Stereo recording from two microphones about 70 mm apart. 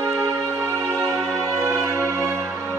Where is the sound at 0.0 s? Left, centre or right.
Right.